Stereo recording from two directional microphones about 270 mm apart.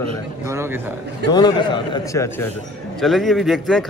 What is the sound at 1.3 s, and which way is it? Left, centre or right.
Speech, centre.